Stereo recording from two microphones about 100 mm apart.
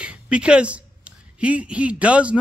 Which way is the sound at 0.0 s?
10° right (ahead or behind).